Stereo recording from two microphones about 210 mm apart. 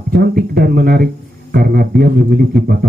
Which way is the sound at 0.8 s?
45° right (ahead or behind).